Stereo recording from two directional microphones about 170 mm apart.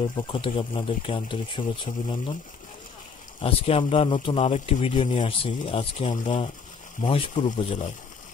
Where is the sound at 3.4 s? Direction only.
35° left (ahead or behind).